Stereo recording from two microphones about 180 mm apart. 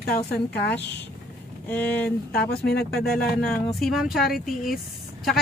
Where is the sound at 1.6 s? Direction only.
10° left (ahead or behind).